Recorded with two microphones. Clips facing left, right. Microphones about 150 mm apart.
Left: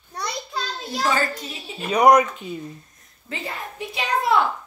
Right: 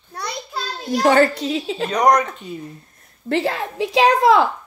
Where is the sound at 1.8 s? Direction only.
10° left (ahead or behind).